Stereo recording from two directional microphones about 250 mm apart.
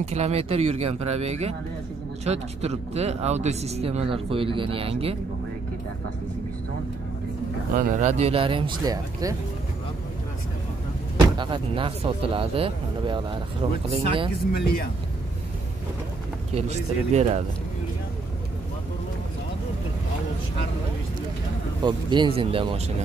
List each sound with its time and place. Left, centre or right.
0.0 s speech: right
7.7 s speech: right; by 9.4 s centre
11.1 s speech: centre
16.5 s speech: right
21.8 s speech: centre